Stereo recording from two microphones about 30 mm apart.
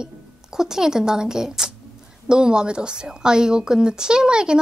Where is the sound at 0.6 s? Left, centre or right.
Centre.